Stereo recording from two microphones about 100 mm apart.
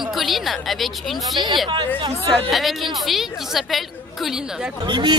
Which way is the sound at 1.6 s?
50° right (ahead or behind).